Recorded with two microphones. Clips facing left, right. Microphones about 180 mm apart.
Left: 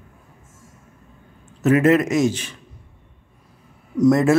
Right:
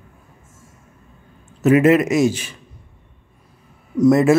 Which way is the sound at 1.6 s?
10° right (ahead or behind).